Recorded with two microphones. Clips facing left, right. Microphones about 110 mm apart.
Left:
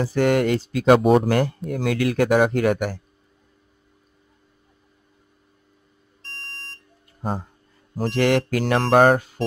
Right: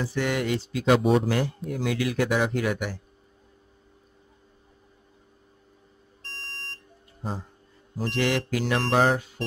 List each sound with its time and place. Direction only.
0.0 s speech: 50° left (ahead or behind)
6.2 s buzzer: centre (ahead or behind)
8.2 s speech: 55° left (ahead or behind)